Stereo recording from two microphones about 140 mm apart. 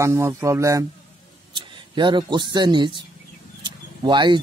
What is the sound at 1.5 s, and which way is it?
Speech, 35° right (ahead or behind).